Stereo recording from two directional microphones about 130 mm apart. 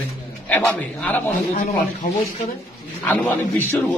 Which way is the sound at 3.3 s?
15° left (ahead or behind).